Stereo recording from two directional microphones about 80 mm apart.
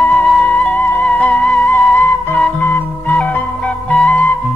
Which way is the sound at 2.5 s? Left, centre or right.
Left.